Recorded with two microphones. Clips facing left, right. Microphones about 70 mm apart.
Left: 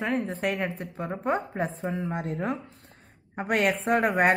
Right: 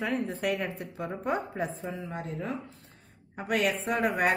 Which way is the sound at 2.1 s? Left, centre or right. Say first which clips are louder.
Left 5 dB; left.